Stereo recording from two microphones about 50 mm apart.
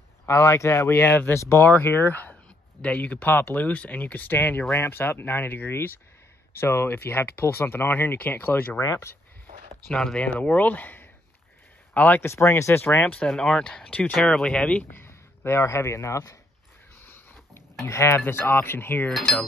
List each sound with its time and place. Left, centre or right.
0.3 s speech: left
1.3 s speech: left
1.6 s speech: left
8.7 s speech: left
9.8 s speech: centre
10.4 s speech: left
12.2 s speech: left
13.4 s speech: centre
14.9 s speech: left
17.0 s a sound: left
17.8 s speech: left
18.2 s speech: left
19.1 s a sound: centre